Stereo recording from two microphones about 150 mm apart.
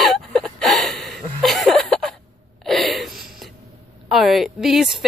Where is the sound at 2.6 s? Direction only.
Centre (ahead or behind).